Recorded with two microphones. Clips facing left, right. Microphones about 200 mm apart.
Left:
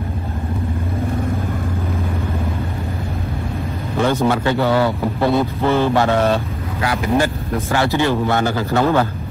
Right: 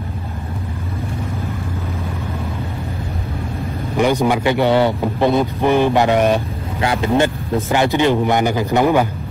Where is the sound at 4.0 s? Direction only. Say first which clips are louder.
Right 1 dB; 15° right (ahead or behind).